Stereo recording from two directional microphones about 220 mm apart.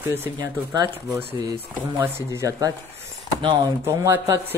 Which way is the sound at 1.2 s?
25° right (ahead or behind).